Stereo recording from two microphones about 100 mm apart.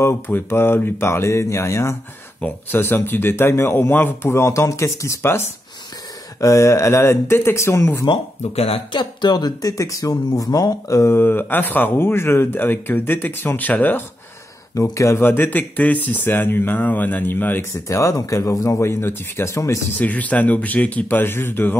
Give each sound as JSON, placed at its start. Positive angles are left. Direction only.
{"t": 0.0, "sound": "speech", "side_deg": 25}
{"t": 8.5, "sound": "speech", "side_deg": 85}
{"t": 8.9, "sound": "speech", "side_deg": 45}
{"t": 14.7, "sound": "speech", "side_deg": 30}
{"t": 17.8, "sound": "speech", "side_deg": 30}
{"t": 20.0, "sound": "speech", "side_deg": 15}